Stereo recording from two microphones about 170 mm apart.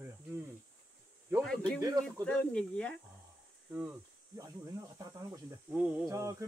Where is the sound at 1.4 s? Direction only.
5° left (ahead or behind).